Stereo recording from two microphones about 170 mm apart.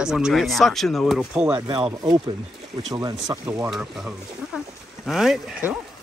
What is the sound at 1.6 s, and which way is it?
Speech, 25° right (ahead or behind).